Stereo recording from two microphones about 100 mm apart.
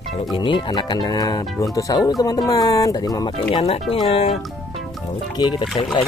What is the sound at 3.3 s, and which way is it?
Speech, 60° left (ahead or behind).